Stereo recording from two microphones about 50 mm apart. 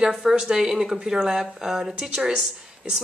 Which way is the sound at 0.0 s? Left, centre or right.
Centre.